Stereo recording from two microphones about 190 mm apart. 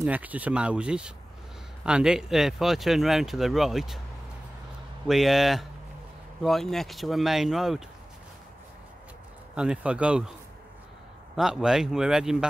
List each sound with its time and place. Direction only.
0.0 s speech: 10° right (ahead or behind)
5.0 s speech: centre (ahead or behind)
9.6 s speech: 5° right (ahead or behind)
11.3 s speech: centre (ahead or behind)